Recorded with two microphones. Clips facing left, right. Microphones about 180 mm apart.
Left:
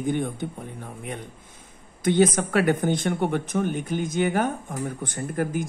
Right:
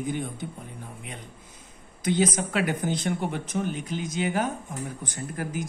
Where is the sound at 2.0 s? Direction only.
55° left (ahead or behind).